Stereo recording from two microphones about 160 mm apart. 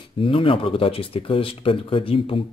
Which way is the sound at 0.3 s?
35° left (ahead or behind).